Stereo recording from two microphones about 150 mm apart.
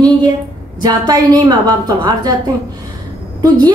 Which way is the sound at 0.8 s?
25° right (ahead or behind).